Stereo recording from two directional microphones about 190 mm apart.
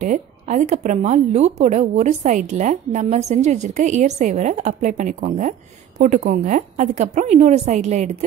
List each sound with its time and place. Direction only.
0.0 s a woman's voice: 40° right (ahead or behind)